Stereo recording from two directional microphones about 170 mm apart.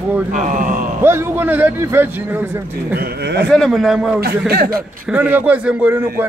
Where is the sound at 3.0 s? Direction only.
75° right (ahead or behind).